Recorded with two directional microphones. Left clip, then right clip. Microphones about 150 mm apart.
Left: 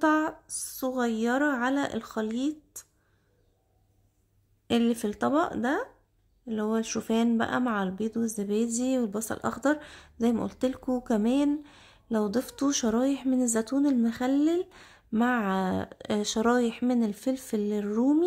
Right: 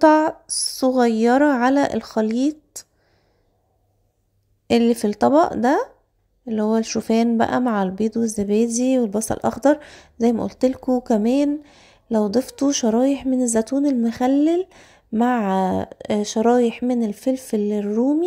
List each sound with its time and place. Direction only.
0.0 s a woman's voice: 35° right (ahead or behind)
4.6 s a woman's voice: 30° right (ahead or behind)